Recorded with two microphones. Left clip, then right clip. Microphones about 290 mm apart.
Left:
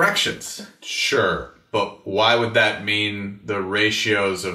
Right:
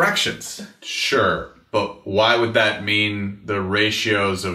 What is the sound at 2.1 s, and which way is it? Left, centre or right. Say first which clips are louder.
Speech: right 1 dB; right.